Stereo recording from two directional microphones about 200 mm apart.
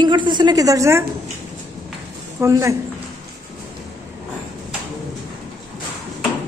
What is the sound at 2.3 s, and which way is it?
Speech, 15° right (ahead or behind).